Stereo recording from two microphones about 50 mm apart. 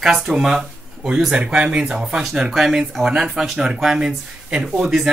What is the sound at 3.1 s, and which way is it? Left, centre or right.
Speech, centre.